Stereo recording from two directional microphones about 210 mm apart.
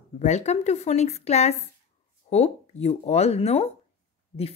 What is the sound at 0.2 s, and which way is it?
A woman's voice, 30° left (ahead or behind).